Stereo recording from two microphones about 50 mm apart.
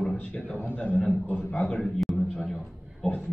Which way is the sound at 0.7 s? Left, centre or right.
Left.